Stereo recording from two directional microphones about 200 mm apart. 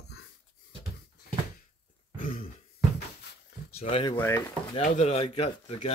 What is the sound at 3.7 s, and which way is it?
Speech, 25° left (ahead or behind).